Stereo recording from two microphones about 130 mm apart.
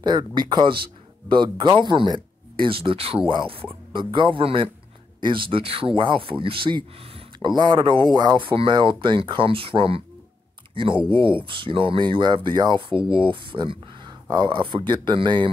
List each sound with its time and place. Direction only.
0.0 s speech: 35° right (ahead or behind)